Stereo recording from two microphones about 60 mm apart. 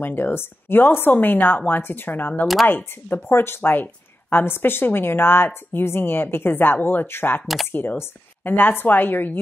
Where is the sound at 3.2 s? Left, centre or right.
Left.